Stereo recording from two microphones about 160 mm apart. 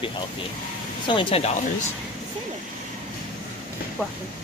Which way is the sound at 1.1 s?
35° left (ahead or behind).